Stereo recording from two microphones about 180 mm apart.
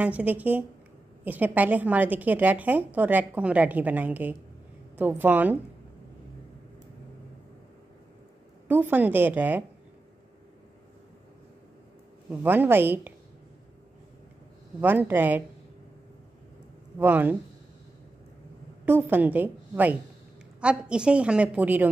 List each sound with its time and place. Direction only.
0.0 s a woman's voice: 10° right (ahead or behind)
8.6 s a woman's voice: 10° right (ahead or behind)
12.3 s a woman's voice: 10° right (ahead or behind)
14.8 s a woman's voice: 10° right (ahead or behind)
17.0 s a woman's voice: 10° right (ahead or behind)
18.9 s a woman's voice: 10° right (ahead or behind)